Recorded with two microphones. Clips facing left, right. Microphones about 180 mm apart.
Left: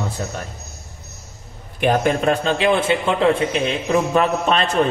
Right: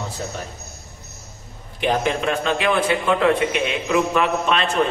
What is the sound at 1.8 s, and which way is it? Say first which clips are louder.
A man's voice: left 4 dB; 45° left (ahead or behind).